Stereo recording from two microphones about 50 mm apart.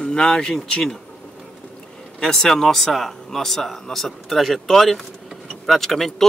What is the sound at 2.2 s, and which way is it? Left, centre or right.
A man's voice, centre.